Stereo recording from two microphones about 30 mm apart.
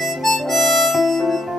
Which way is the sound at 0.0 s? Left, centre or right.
Centre.